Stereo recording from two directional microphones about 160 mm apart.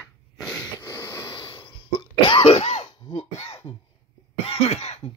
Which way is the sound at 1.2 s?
30° left (ahead or behind).